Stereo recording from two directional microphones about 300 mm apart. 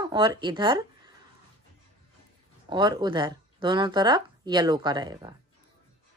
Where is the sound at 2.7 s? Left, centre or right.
Centre.